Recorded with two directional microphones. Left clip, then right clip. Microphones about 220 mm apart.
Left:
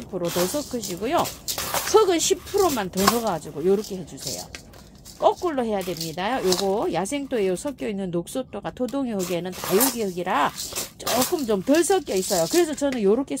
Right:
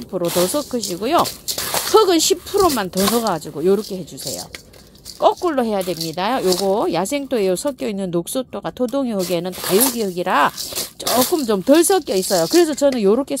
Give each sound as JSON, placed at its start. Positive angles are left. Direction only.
{"t": 0.1, "sound": "speech", "side_deg": -25}
{"t": 0.6, "sound": "speech", "side_deg": -40}
{"t": 5.2, "sound": "speech", "side_deg": -40}